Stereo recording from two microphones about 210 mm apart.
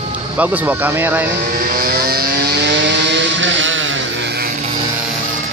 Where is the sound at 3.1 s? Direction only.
60° right (ahead or behind).